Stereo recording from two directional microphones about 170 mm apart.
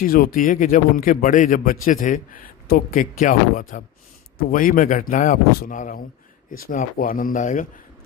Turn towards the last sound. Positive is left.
turn(degrees=50)  # may be behind; listen again after turning